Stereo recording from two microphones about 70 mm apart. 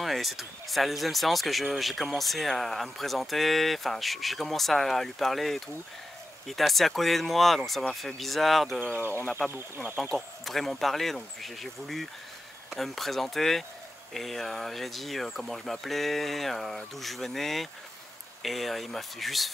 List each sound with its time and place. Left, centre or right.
0.0 s speech: centre
9.5 s speech: right
10.0 s speech: centre